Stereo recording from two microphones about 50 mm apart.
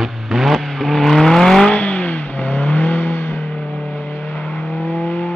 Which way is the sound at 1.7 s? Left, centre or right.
Left.